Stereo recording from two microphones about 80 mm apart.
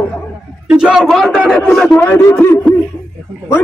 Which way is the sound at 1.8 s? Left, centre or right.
Left.